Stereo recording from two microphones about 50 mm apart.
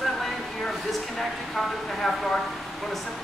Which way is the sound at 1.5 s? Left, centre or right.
Centre.